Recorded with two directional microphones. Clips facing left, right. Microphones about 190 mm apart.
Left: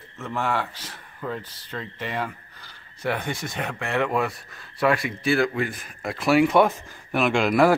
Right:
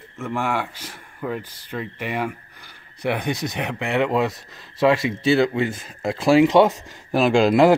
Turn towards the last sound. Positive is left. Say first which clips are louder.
# right 4 dB
turn(degrees=-25)  # may be behind; listen again after turning